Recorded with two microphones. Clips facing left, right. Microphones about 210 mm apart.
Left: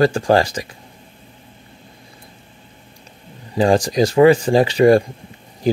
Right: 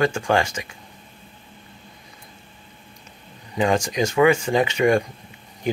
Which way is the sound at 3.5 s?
35° left (ahead or behind).